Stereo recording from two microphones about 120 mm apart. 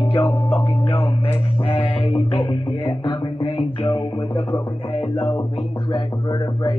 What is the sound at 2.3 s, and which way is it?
Music, 45° left (ahead or behind).